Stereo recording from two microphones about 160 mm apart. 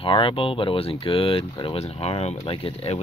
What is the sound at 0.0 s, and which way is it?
Speech, 30° left (ahead or behind).